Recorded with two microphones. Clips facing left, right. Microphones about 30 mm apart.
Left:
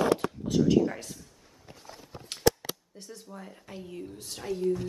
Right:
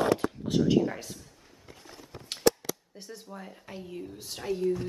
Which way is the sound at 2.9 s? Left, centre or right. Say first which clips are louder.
Right 1 dB; centre.